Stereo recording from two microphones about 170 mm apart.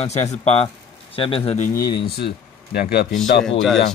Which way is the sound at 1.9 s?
70° left (ahead or behind).